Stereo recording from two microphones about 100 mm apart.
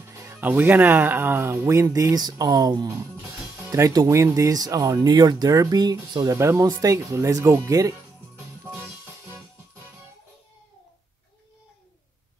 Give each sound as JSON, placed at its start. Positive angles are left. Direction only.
{"t": 0.4, "sound": "speech", "side_deg": -20}
{"t": 3.9, "sound": "speech", "side_deg": -35}
{"t": 6.3, "sound": "speech", "side_deg": -30}